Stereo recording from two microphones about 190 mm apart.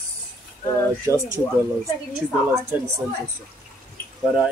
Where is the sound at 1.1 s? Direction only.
15° right (ahead or behind).